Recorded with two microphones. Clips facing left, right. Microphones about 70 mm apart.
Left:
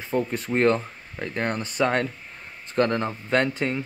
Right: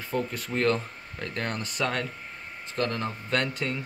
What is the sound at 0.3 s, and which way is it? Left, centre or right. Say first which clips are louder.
Speech: left 6 dB; left.